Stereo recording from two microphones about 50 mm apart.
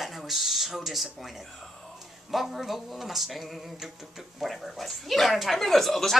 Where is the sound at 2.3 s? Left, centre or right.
Centre.